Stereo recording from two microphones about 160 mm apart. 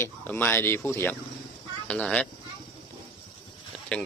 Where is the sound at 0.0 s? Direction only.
10° left (ahead or behind).